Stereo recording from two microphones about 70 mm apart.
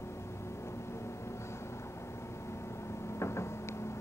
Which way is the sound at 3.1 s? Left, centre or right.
Left.